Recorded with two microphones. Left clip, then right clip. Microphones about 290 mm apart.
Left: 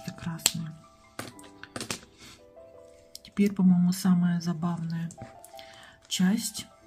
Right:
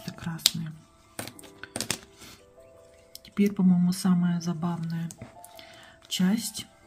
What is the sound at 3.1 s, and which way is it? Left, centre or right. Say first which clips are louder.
Speech: right 1 dB; centre.